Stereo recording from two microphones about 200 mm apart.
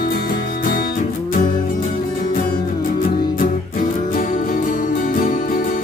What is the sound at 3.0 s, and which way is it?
Music, 45° left (ahead or behind).